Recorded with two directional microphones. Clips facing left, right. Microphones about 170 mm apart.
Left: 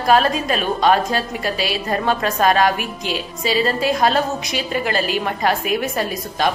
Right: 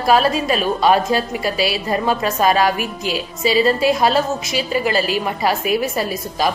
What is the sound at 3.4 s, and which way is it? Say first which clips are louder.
Speech: right 4 dB; 45° left (ahead or behind).